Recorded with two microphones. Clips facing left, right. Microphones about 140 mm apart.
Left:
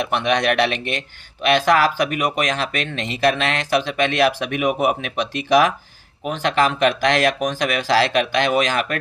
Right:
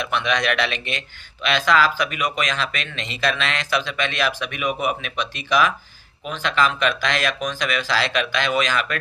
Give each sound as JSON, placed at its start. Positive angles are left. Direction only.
{"t": 0.1, "sound": "speech", "side_deg": 60}